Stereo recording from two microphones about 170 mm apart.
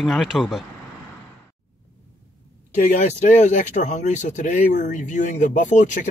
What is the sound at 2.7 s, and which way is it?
Speech, 45° left (ahead or behind).